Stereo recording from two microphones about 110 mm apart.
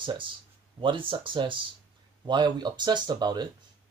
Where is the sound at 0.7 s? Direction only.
50° right (ahead or behind).